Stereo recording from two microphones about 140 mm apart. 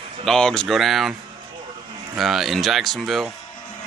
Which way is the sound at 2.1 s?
Centre (ahead or behind).